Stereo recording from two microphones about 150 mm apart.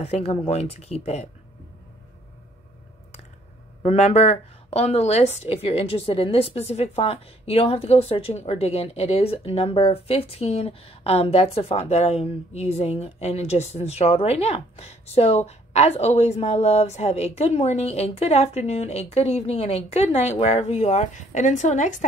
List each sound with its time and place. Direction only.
0.0 s a woman's voice: 45° left (ahead or behind)
3.8 s a woman's voice: 45° left (ahead or behind)